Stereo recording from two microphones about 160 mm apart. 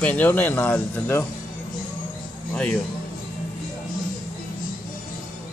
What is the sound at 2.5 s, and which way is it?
Speech, 5° left (ahead or behind).